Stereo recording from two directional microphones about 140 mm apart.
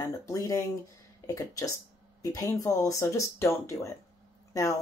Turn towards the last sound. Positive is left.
turn(degrees=20)  # may be behind; listen again after turning